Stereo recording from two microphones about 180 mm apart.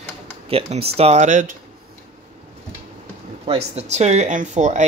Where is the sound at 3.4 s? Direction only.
35° right (ahead or behind).